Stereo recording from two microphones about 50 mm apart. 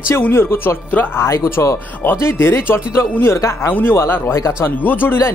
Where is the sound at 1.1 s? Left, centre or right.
Left.